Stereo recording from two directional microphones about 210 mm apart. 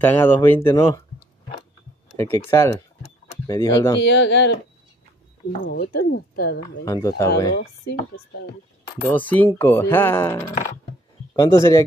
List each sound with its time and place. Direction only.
0.0 s speech: 10° left (ahead or behind)
2.3 s speech: 10° left (ahead or behind)
4.0 s speech: 55° left (ahead or behind)
5.7 s speech: 50° left (ahead or behind)
6.8 s speech: 15° left (ahead or behind)
9.0 s speech: 10° left (ahead or behind)